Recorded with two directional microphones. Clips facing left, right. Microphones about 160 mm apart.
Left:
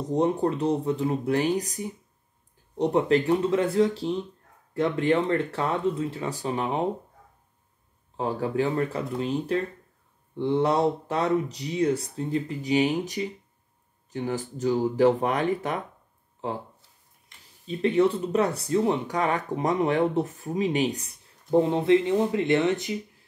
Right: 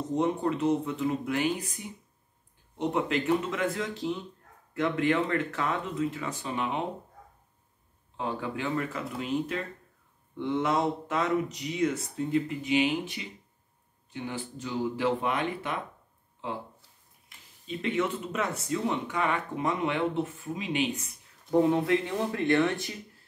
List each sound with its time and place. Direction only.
0.1 s speech: 35° left (ahead or behind)
8.2 s speech: 35° left (ahead or behind)
17.6 s speech: 35° left (ahead or behind)